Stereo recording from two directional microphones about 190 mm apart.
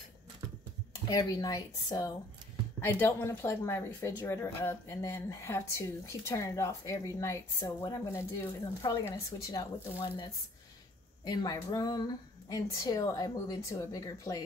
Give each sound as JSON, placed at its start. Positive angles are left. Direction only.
{"t": 1.0, "sound": "a woman's voice", "side_deg": 20}